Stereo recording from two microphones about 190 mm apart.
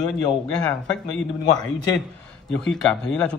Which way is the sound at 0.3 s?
5° left (ahead or behind).